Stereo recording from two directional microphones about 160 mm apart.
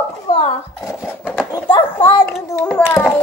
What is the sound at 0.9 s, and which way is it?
Speech, 15° left (ahead or behind).